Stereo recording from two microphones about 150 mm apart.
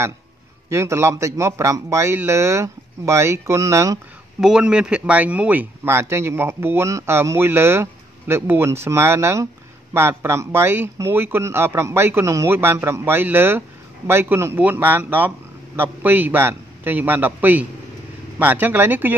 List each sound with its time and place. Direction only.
0.7 s a man's voice: 20° right (ahead or behind)
4.4 s speech: 5° right (ahead or behind)